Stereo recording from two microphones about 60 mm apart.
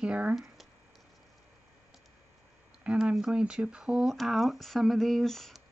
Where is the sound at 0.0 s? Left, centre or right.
Right.